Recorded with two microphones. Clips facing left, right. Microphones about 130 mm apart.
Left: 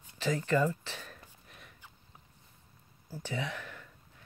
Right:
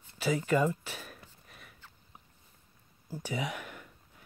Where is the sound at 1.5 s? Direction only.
Centre (ahead or behind).